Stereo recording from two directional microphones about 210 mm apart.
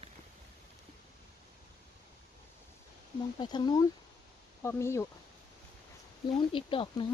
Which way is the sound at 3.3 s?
20° left (ahead or behind).